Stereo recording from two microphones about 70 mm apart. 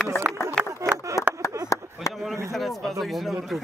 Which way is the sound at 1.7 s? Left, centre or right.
Left.